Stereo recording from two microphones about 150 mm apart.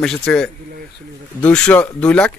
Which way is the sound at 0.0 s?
5° left (ahead or behind).